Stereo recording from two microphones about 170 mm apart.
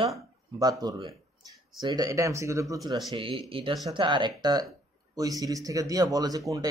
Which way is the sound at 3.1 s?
30° right (ahead or behind).